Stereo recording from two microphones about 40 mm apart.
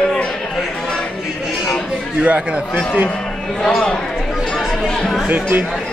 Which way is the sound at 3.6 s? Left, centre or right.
Centre.